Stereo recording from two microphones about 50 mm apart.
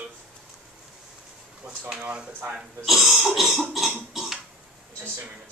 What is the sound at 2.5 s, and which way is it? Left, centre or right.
Speech, centre.